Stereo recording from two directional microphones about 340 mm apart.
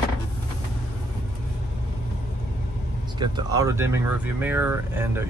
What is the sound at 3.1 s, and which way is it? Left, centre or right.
Speech, centre.